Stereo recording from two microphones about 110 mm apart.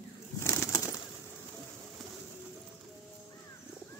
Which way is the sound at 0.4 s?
20° left (ahead or behind).